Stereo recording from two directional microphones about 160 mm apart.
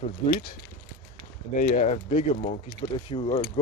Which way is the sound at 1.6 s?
45° left (ahead or behind).